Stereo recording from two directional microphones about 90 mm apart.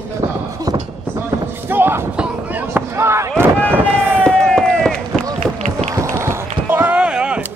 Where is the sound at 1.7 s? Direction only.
25° right (ahead or behind).